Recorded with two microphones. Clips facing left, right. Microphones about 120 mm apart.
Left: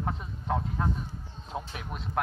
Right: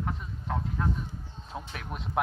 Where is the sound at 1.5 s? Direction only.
15° left (ahead or behind).